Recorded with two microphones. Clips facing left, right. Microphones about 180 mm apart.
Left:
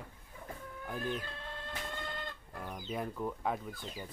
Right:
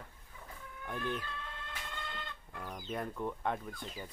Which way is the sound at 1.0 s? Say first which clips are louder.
Even; 35° left (ahead or behind).